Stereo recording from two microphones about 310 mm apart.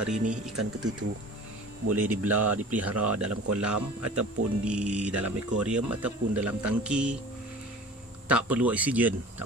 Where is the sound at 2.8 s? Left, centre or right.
Right.